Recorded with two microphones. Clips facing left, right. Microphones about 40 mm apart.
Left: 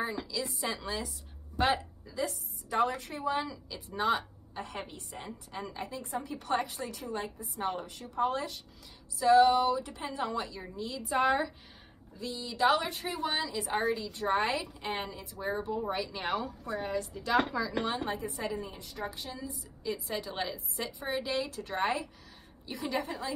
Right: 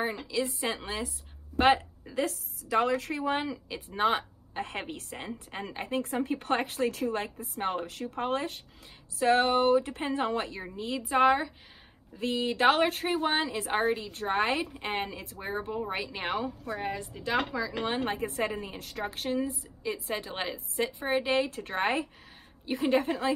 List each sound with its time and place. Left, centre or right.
0.0 s a woman's voice: right
4.6 s a woman's voice: right
10.6 s a woman's voice: right
12.2 s a woman's voice: right
15.3 s a woman's voice: right
16.6 s a woman's voice: right
17.4 s speech: centre
17.8 s a woman's voice: right
19.8 s a woman's voice: right